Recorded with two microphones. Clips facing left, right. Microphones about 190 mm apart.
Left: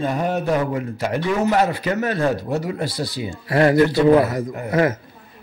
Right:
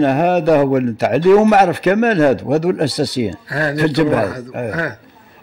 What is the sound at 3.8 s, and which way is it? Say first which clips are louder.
Speech: right 2 dB; 70° right (ahead or behind).